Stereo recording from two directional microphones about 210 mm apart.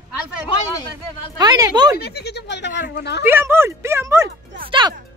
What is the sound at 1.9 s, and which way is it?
Speech, 50° left (ahead or behind).